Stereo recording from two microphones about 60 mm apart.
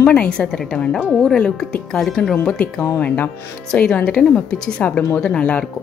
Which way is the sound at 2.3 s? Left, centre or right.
Left.